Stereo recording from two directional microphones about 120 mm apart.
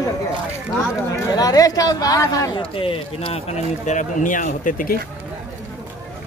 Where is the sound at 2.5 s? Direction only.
50° left (ahead or behind); by 4.7 s 90° left.